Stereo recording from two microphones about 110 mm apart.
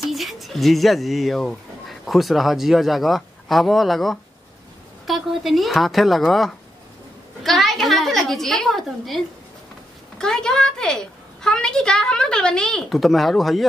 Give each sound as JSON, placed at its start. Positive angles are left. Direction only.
{"t": 0.0, "sound": "a woman's voice", "side_deg": 0}